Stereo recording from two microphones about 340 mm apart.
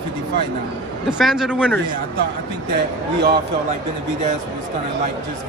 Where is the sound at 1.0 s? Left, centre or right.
Centre.